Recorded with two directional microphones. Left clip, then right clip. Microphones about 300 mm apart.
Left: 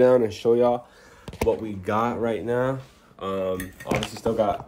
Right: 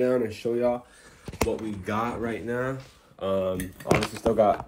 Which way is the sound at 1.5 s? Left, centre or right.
Centre.